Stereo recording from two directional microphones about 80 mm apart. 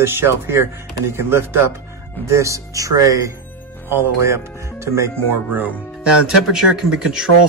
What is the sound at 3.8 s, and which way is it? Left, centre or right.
Speech, right.